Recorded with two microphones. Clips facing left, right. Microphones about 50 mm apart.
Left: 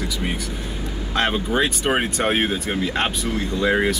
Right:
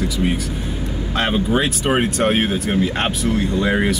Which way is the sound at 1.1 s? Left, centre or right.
Centre.